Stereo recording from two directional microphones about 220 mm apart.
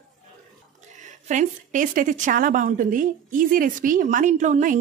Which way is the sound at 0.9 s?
35° right (ahead or behind).